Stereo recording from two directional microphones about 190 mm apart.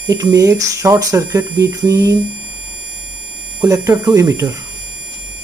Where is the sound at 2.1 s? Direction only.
Centre (ahead or behind).